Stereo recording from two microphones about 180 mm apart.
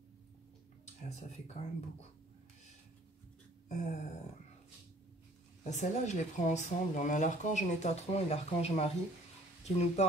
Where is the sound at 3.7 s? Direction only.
40° left (ahead or behind).